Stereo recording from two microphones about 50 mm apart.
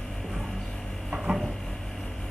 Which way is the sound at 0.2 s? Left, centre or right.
Centre.